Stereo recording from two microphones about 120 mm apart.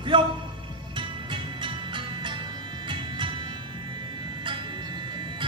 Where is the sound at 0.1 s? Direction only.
40° right (ahead or behind).